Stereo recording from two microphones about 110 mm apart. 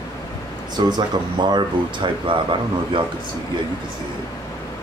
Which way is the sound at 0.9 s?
40° right (ahead or behind).